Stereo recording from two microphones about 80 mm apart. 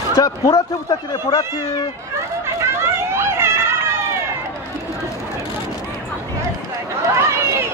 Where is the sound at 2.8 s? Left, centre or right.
Right.